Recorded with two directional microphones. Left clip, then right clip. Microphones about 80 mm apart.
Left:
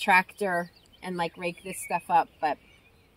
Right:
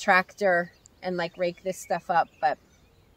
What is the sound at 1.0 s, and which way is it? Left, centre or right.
Speech, right.